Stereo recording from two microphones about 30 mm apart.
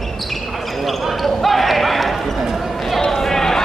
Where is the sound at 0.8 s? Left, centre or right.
Centre.